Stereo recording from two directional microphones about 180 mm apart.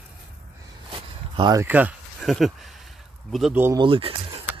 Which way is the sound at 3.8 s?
30° right (ahead or behind).